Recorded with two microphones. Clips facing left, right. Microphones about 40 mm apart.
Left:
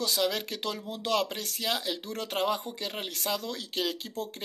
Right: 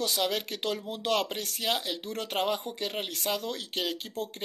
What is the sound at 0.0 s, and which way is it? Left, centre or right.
Speech, centre.